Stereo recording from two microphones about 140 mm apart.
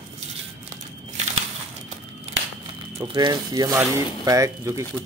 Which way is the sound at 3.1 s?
30° right (ahead or behind).